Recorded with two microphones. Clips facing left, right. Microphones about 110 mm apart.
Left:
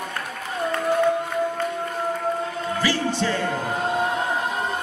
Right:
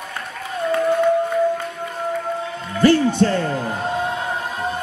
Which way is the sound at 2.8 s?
55° right (ahead or behind).